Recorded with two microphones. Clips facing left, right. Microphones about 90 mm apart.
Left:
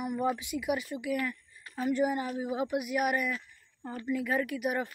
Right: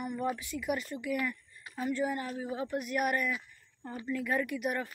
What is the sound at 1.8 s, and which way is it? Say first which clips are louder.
Speech: left 4 dB; 15° left (ahead or behind).